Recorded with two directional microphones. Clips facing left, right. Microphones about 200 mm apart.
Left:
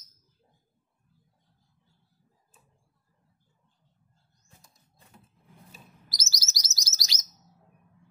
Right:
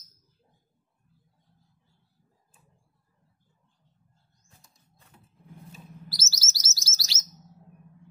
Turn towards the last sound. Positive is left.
turn(degrees=15)  # may be behind; listen again after turning